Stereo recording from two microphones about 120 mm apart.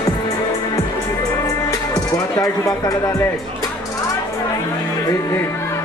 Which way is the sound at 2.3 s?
30° left (ahead or behind).